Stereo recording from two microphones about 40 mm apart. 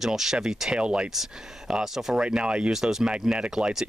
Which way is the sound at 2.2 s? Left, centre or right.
Right.